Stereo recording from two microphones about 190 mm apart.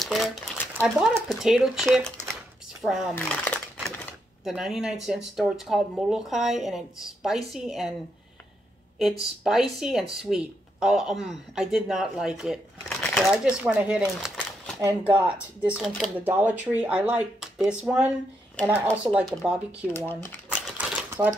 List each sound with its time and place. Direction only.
0.0 s crumpling: centre (ahead or behind)
0.7 s a woman's voice: 5° right (ahead or behind)
3.2 s speech: 10° left (ahead or behind)
3.7 s typewriter: 5° left (ahead or behind)
5.0 s a woman's voice: 5° right (ahead or behind)
9.4 s a woman's voice: 5° right (ahead or behind)
19.0 s a woman's voice: centre (ahead or behind)
20.1 s speech: 10° left (ahead or behind)
20.5 s typewriter: 5° right (ahead or behind)